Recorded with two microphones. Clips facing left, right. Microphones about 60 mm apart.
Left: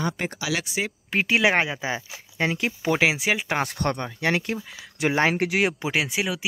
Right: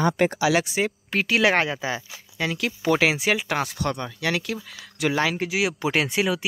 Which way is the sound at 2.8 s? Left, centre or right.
Centre.